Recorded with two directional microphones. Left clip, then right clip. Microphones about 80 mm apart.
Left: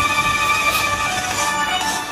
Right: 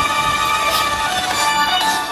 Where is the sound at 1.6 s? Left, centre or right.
Right.